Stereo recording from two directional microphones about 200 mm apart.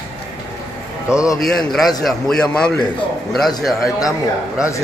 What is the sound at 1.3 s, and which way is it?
A man's voice, centre (ahead or behind).